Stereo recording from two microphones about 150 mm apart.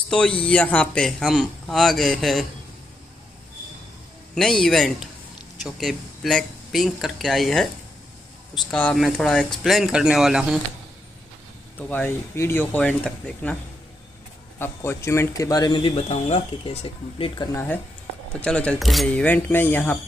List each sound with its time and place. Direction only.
0.1 s speech: 5° left (ahead or behind)
4.4 s speech: 5° left (ahead or behind)
11.9 s speech: 15° left (ahead or behind)
14.6 s a man's voice: 15° left (ahead or behind)
16.0 s speech: 45° left (ahead or behind)
17.4 s speech: 30° left (ahead or behind)
18.3 s speech: 5° left (ahead or behind)